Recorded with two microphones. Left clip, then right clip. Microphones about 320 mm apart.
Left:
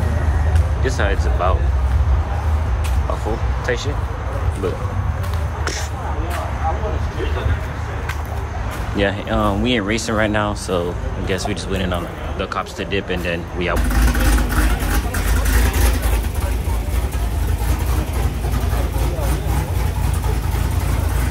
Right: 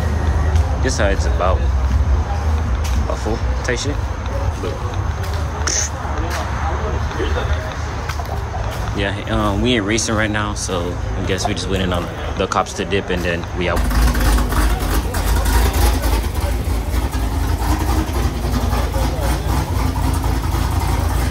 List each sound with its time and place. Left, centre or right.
0.8 s speech: centre
3.6 s speech: centre
8.9 s speech: centre